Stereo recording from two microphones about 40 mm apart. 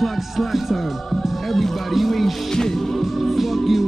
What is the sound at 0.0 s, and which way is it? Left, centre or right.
Music, centre.